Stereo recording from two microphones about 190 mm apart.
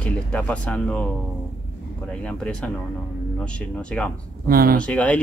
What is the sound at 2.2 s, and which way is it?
Speech, 5° left (ahead or behind).